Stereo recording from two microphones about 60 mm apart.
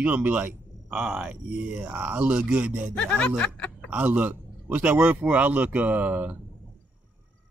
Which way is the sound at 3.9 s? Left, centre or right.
Right.